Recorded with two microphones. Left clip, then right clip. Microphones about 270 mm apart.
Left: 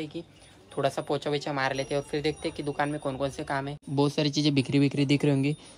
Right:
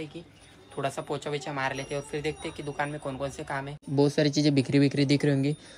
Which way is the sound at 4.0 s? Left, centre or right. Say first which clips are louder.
Right 2 dB; centre.